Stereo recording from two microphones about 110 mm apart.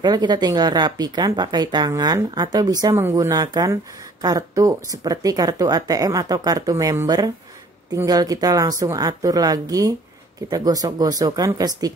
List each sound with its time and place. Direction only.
0.0 s speech: 40° right (ahead or behind)